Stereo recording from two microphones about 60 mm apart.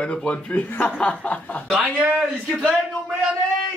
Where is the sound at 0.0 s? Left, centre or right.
Centre.